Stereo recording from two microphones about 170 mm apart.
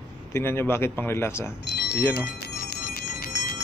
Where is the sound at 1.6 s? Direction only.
75° left (ahead or behind).